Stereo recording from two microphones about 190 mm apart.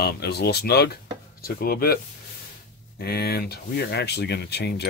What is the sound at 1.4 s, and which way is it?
Chopping, 50° left (ahead or behind).